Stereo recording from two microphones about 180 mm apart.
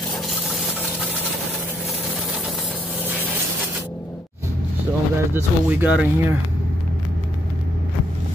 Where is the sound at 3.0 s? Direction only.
10° right (ahead or behind).